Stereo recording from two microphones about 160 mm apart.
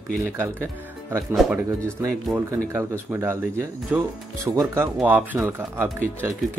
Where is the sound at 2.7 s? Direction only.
15° right (ahead or behind).